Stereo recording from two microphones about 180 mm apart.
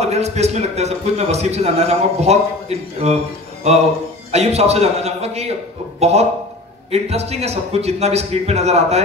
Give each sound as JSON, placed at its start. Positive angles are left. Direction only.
{"t": 0.0, "sound": "a man's voice", "side_deg": -35}
{"t": 4.3, "sound": "a man's voice", "side_deg": -35}